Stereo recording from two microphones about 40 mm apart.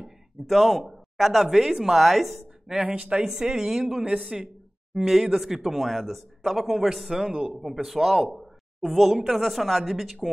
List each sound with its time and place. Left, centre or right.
0.5 s speech: centre
2.7 s speech: centre
3.0 s speech: right
3.5 s speech: centre
8.4 s a sound: centre
9.2 s speech: centre